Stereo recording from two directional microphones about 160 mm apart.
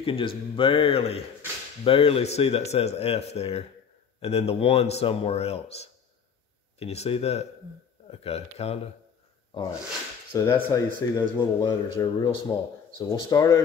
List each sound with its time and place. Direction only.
0.0 s speech: 35° left (ahead or behind)
10.3 s speech: 20° left (ahead or behind)